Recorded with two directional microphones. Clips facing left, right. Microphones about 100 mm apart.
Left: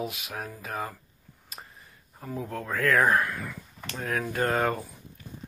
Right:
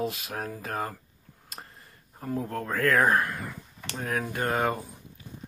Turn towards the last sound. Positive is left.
turn(degrees=-25)  # may be behind; listen again after turning